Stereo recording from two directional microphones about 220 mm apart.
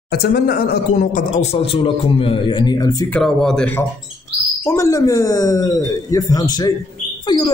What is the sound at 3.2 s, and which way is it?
A man's voice, centre (ahead or behind).